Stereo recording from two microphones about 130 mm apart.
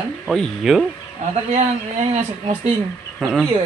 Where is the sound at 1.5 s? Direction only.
60° right (ahead or behind).